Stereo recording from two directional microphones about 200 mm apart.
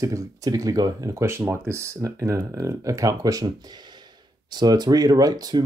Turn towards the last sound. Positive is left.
turn(degrees=-20)  # may be behind; listen again after turning